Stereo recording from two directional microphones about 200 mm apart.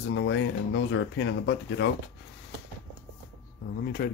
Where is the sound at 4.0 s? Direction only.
50° left (ahead or behind).